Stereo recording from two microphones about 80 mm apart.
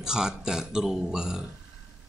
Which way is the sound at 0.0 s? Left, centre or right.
Centre.